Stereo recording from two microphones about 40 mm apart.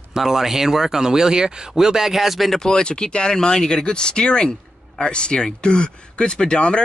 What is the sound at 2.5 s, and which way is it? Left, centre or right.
Speech, centre.